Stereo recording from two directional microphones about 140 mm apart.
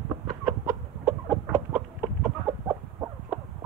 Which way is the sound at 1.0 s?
5° right (ahead or behind).